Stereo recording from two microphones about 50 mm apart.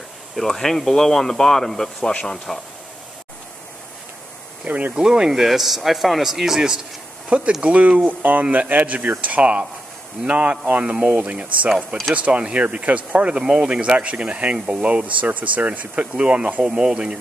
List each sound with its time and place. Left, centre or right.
0.4 s speech: centre
4.6 s speech: right
4.9 s speech: centre
7.2 s speech: right
11.1 s speech: right
12.2 s speech: right